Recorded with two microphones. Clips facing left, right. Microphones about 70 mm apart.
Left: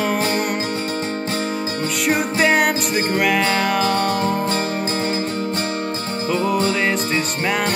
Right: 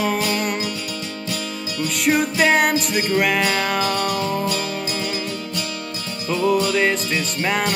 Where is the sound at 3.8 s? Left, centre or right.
Left.